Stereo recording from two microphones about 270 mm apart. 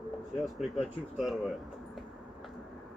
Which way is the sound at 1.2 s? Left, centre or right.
Centre.